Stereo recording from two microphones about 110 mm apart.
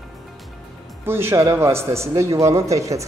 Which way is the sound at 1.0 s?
20° right (ahead or behind).